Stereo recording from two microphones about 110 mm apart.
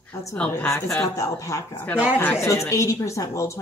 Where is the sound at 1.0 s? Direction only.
30° left (ahead or behind).